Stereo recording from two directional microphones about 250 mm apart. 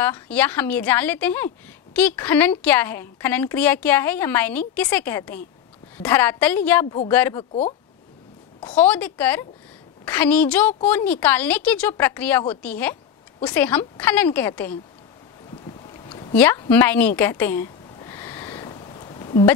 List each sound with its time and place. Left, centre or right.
0.0 s a woman's voice: centre
8.6 s a woman's voice: centre
15.6 s boat: left
16.3 s a sound: centre